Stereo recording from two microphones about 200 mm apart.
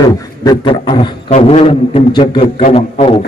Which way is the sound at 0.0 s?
20° left (ahead or behind).